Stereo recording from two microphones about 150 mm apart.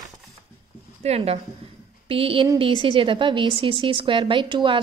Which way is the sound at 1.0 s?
45° right (ahead or behind).